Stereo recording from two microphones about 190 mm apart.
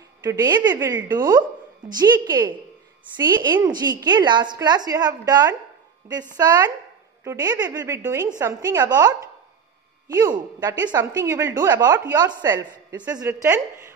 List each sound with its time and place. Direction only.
0.2 s a woman's voice: 20° right (ahead or behind)
10.6 s a woman's voice: 20° right (ahead or behind)